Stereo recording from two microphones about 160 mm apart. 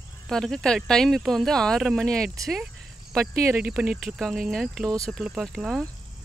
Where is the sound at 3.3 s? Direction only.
20° right (ahead or behind).